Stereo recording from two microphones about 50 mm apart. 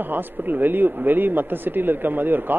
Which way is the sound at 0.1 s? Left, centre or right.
Right.